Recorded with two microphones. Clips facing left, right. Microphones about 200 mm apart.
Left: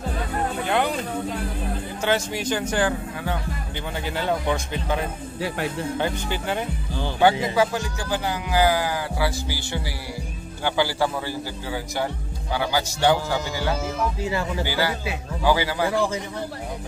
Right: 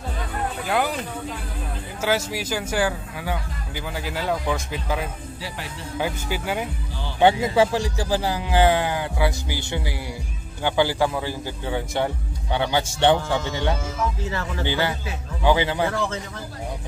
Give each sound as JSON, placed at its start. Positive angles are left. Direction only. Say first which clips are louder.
{"t": 0.7, "sound": "speech", "louder": "even", "side_deg": -5}
{"t": 2.0, "sound": "speech", "louder": "right 1 dB", "side_deg": -5}
{"t": 5.4, "sound": "speech", "louder": "left 10 dB", "side_deg": 55}
{"t": 5.9, "sound": "speech", "louder": "left 1 dB", "side_deg": -5}
{"t": 7.5, "sound": "speech", "louder": "right 3 dB", "side_deg": -30}
{"t": 14.2, "sound": "speech", "louder": "left 3 dB", "side_deg": 15}
{"t": 14.6, "sound": "speech", "louder": "even", "side_deg": -20}
{"t": 15.9, "sound": "speech", "louder": "left 3 dB", "side_deg": 10}